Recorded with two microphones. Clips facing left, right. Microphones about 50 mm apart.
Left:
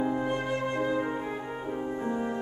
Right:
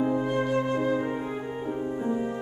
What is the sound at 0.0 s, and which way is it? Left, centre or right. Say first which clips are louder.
Flute: right 3 dB; centre.